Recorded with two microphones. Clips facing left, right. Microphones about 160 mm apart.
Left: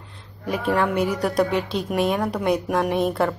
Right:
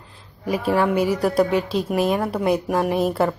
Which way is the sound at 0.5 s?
Centre (ahead or behind).